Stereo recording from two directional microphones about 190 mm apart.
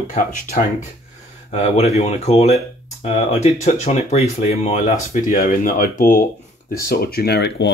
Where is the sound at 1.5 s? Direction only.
35° left (ahead or behind).